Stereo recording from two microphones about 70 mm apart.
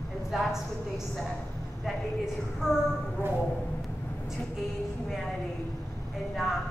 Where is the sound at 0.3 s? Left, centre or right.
Centre.